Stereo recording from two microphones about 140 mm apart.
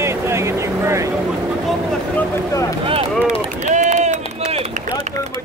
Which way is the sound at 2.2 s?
20° left (ahead or behind).